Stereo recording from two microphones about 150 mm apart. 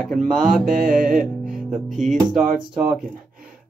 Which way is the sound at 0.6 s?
60° right (ahead or behind).